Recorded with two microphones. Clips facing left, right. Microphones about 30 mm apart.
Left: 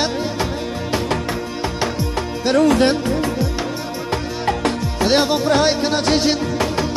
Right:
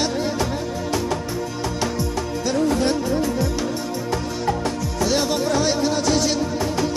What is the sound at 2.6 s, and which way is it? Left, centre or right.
Music, left.